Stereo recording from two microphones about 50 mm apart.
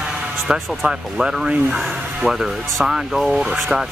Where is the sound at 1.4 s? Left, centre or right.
Right.